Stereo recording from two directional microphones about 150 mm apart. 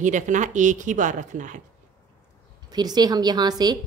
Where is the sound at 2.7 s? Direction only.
30° right (ahead or behind).